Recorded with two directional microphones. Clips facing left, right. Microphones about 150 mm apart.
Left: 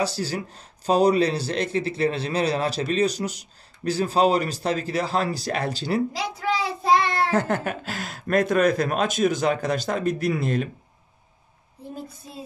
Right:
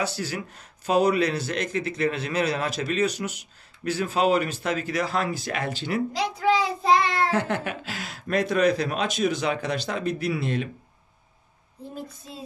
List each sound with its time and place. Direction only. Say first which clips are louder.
0.0 s speech: left 3 dB; 35° left (ahead or behind)
7.1 s speech: left 2 dB; 45° left (ahead or behind)